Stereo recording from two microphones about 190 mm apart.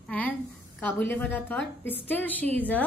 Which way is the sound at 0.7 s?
10° left (ahead or behind).